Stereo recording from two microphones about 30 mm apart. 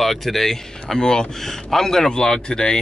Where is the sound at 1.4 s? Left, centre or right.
Centre.